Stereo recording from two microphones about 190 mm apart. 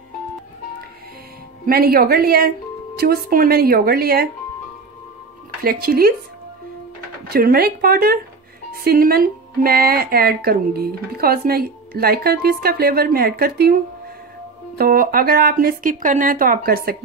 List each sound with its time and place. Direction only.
1.7 s speech: 50° right (ahead or behind)
5.6 s speech: 50° right (ahead or behind)
7.2 s speech: 50° right (ahead or behind)
14.8 s speech: 50° right (ahead or behind)